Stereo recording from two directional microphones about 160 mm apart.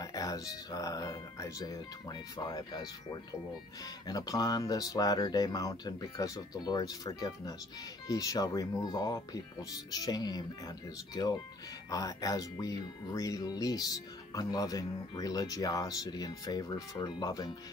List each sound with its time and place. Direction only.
0.0 s speech: 25° left (ahead or behind)
4.1 s speech: 25° left (ahead or behind)